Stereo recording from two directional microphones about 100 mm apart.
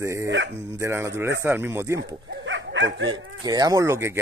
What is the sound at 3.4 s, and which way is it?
Speech, 40° right (ahead or behind).